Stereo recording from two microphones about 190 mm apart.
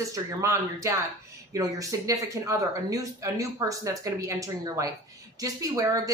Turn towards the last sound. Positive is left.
turn(degrees=-20)  # may be behind; listen again after turning